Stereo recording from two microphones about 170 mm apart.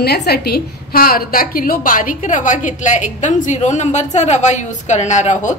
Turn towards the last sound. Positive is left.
turn(degrees=45)  # may be behind; listen again after turning